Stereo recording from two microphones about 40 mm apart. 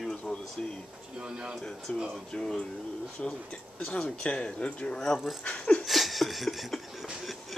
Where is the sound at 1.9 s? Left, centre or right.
Left.